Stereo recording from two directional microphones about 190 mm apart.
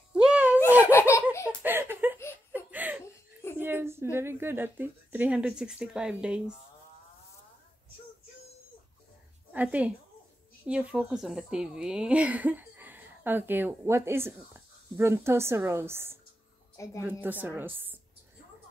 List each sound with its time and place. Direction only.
0.1 s a sound: 5° right (ahead or behind)
0.8 s laughter: 15° left (ahead or behind)
1.6 s a sound: 10° right (ahead or behind)
2.5 s laughter: 10° right (ahead or behind)
3.5 s a woman's voice: 10° right (ahead or behind)
9.5 s a woman's voice: 10° right (ahead or behind)
16.7 s a woman's voice: 15° left (ahead or behind)
17.2 s speech: 10° right (ahead or behind)